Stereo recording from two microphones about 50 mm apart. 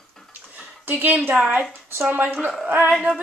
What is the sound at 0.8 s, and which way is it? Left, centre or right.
Speech, right.